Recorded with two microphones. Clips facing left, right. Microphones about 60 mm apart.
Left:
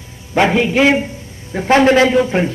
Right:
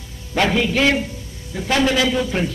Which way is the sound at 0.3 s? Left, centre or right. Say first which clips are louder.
Left 5 dB; left.